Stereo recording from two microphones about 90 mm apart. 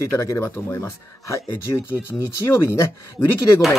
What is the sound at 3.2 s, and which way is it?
Speech, centre (ahead or behind).